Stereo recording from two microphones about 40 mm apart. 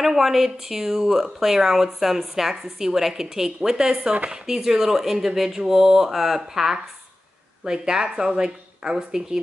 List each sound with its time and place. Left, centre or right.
0.0 s speech: centre